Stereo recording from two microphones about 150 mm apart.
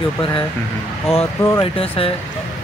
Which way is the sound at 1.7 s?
40° left (ahead or behind).